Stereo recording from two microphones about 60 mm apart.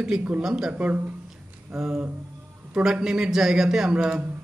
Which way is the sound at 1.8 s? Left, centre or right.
Centre.